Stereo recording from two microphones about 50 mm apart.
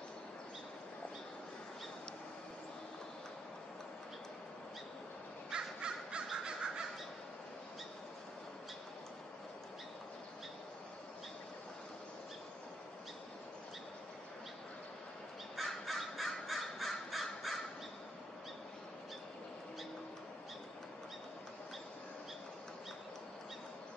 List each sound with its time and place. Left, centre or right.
5.5 s crow: centre
15.5 s crow: centre